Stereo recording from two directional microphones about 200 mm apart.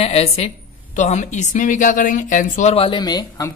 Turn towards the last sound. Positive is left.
turn(degrees=20)  # may be behind; listen again after turning